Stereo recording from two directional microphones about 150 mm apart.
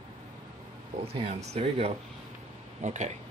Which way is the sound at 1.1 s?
40° right (ahead or behind).